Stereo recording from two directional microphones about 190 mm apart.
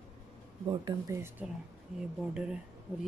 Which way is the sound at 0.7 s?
20° right (ahead or behind).